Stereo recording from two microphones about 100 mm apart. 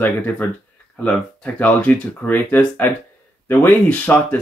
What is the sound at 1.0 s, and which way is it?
Speech, 15° left (ahead or behind).